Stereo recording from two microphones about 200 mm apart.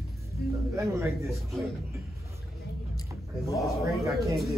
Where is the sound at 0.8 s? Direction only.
15° right (ahead or behind).